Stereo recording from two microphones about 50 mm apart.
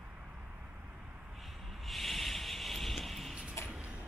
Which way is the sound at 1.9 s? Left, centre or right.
Centre.